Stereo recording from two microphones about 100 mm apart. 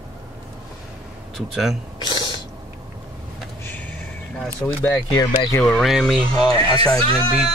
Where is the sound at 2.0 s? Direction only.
45° left (ahead or behind).